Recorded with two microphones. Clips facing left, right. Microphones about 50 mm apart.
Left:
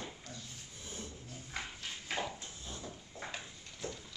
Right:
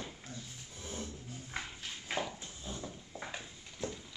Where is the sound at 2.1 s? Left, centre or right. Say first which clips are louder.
Right 1 dB; centre.